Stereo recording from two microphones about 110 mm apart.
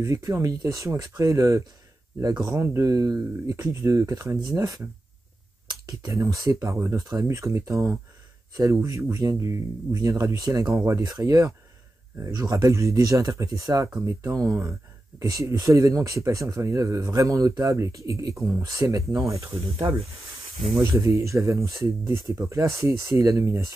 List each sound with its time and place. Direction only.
0.0 s speech: 30° right (ahead or behind)
20.8 s speech: 25° right (ahead or behind)